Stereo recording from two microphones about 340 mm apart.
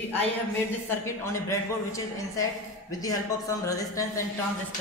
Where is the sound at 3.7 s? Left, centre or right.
Centre.